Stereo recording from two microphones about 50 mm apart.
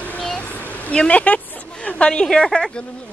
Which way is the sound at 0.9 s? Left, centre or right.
Centre.